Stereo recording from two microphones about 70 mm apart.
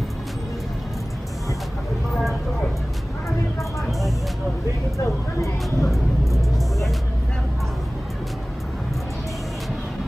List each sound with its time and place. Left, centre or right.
4.9 s speech: left